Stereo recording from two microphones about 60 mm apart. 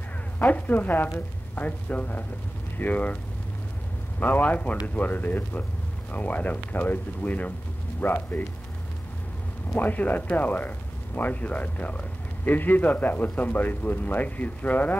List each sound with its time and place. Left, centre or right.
0.4 s speech: left
4.2 s speech: left
9.8 s speech: left